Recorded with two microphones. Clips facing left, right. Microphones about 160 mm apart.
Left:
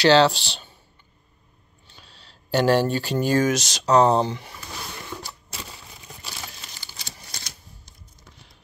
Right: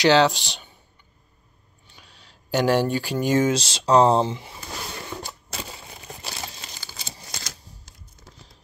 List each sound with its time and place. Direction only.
0.0 s speech: 15° right (ahead or behind)
1.9 s speech: 15° right (ahead or behind)
6.0 s crumpling: 35° right (ahead or behind)